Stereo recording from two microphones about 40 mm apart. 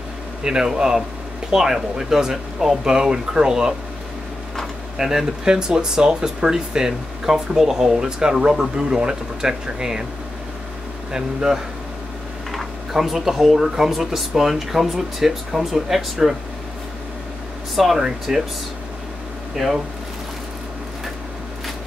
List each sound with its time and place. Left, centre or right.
0.4 s speech: centre
4.9 s speech: centre
11.1 s speech: centre
12.4 s speech: centre
17.7 s speech: centre
19.5 s speech: centre